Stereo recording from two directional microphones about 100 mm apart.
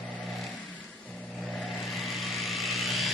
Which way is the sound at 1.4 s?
Centre (ahead or behind).